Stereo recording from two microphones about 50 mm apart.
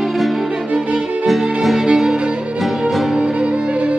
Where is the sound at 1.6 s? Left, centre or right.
Centre.